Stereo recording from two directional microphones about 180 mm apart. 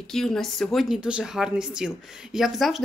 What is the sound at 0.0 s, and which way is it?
A woman's voice, 5° left (ahead or behind).